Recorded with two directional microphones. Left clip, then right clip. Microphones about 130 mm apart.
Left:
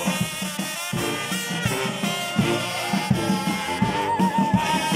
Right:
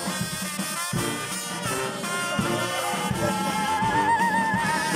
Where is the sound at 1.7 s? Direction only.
35° left (ahead or behind).